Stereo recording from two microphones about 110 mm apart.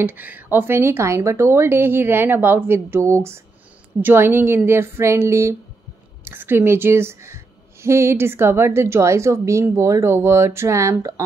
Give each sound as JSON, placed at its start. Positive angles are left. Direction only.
{"t": 0.0, "sound": "a woman's voice", "side_deg": -15}